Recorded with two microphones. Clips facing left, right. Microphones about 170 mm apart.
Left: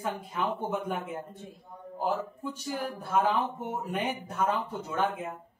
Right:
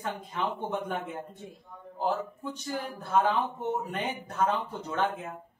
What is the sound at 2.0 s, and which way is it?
A man's voice, 10° left (ahead or behind).